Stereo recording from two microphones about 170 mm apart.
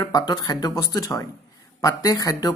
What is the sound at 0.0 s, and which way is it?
Speech, 25° left (ahead or behind).